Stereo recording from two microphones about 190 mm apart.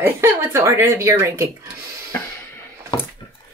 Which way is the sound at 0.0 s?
15° right (ahead or behind).